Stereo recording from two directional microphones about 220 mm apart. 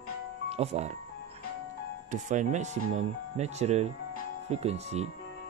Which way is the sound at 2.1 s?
35° right (ahead or behind).